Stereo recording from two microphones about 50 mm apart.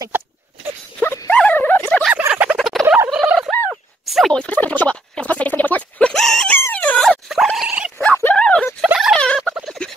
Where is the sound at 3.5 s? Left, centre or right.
Left.